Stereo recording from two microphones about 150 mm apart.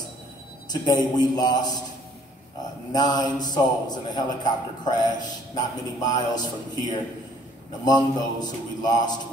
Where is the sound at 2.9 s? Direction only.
30° left (ahead or behind).